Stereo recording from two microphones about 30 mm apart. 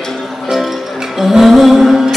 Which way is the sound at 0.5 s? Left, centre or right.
Centre.